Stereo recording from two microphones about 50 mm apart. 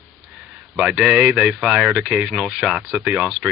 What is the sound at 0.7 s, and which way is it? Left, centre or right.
Speech, centre.